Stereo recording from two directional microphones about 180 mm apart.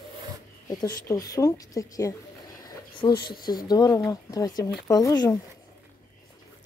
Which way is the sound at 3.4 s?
20° left (ahead or behind).